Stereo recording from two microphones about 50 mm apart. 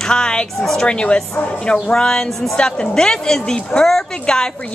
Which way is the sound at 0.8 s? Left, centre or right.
Left.